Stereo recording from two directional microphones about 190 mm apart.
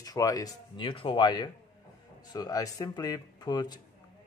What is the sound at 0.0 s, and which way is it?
Speech, 20° left (ahead or behind).